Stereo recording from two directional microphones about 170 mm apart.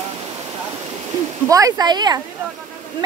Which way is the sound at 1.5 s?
20° right (ahead or behind).